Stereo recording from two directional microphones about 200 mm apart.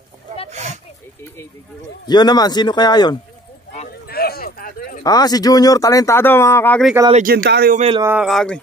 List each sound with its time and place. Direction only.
0.5 s a sound: 35° right (ahead or behind)
2.0 s speech: 20° left (ahead or behind)
4.1 s a sound: 50° left (ahead or behind)
5.0 s speech: 20° left (ahead or behind)
7.4 s a man's voice: 55° right (ahead or behind)
7.7 s speech: 30° right (ahead or behind)
8.0 s speech: 5° right (ahead or behind)